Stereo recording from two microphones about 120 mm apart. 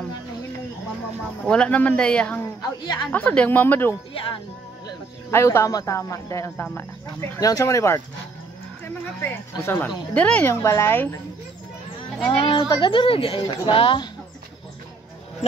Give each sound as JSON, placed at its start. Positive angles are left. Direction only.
{"t": 1.5, "sound": "speech", "side_deg": 10}
{"t": 2.6, "sound": "a woman's voice", "side_deg": 40}
{"t": 3.1, "sound": "speech", "side_deg": 10}
{"t": 4.1, "sound": "speech", "side_deg": 50}
{"t": 5.3, "sound": "speech", "side_deg": 20}
{"t": 7.3, "sound": "speech", "side_deg": 30}
{"t": 10.4, "sound": "speech", "side_deg": 25}
{"t": 12.3, "sound": "speech", "side_deg": 45}